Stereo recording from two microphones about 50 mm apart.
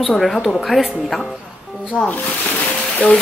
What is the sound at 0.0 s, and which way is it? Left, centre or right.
Speech, centre.